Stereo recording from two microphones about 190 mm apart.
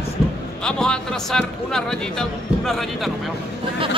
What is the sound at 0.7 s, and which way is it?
Speech, 5° left (ahead or behind).